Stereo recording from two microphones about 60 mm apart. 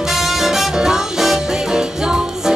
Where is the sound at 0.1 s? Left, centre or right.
Centre.